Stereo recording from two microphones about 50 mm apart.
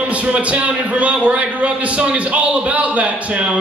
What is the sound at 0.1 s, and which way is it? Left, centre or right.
A man's voice, right.